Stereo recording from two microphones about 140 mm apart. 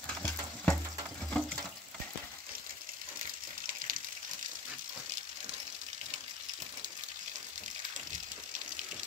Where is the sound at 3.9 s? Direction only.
80° right.